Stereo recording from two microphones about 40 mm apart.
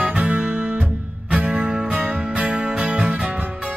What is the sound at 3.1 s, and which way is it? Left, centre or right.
Music, right.